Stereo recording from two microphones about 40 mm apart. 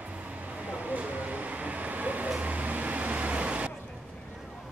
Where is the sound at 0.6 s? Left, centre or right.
Right.